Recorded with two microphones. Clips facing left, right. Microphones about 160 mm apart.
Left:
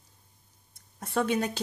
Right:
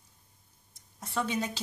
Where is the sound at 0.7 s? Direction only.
55° left (ahead or behind).